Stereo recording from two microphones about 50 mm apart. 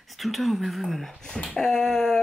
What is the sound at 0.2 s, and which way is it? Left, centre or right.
Speech, centre.